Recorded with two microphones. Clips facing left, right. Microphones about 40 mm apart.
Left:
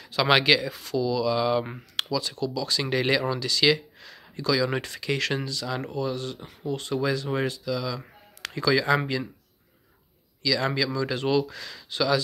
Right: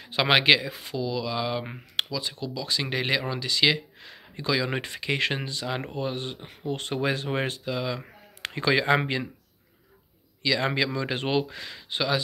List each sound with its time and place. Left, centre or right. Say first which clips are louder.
0.0 s a sound: even; right
0.3 s speech: even; right
6.6 s speech: left 1 dB; right
10.4 s speech: even; right